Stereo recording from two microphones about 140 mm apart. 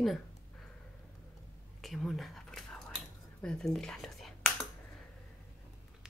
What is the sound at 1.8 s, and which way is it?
Whispering, centre (ahead or behind).